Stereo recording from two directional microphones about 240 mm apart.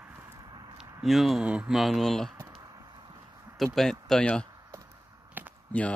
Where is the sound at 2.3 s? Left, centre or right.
Centre.